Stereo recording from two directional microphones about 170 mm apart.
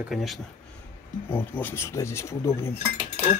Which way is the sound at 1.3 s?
10° left (ahead or behind).